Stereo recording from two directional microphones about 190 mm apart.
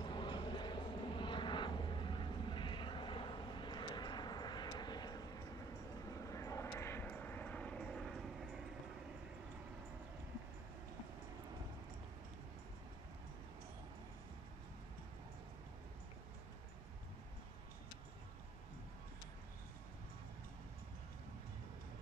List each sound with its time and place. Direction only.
0.0 s vehicle: 25° left (ahead or behind); by 8.6 s centre (ahead or behind)